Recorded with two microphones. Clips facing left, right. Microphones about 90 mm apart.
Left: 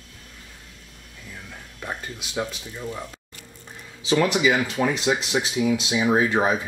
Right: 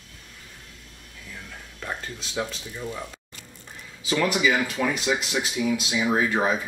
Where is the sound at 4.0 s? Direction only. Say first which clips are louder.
Left 3 dB; 25° left (ahead or behind).